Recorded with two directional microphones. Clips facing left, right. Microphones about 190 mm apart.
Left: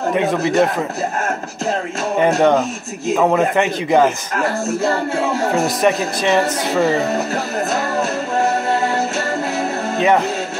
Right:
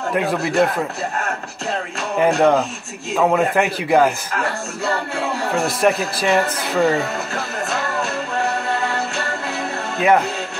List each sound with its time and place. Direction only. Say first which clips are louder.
0.1 s speech: left 2 dB; centre (ahead or behind)
2.1 s speech: left 1 dB; centre (ahead or behind)
5.8 s speech: left 1 dB; centre (ahead or behind)
7.7 s music: left 2 dB; 40° left (ahead or behind)